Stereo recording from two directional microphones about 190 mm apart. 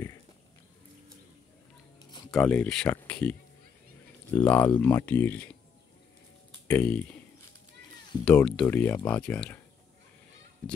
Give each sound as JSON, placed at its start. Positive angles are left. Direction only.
{"t": 2.0, "sound": "a sound", "side_deg": 20}
{"t": 2.3, "sound": "speech", "side_deg": 5}
{"t": 6.7, "sound": "speech", "side_deg": 10}
{"t": 8.3, "sound": "speech", "side_deg": 5}